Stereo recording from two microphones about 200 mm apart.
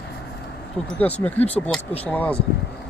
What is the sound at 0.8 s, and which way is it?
Speech, 5° left (ahead or behind).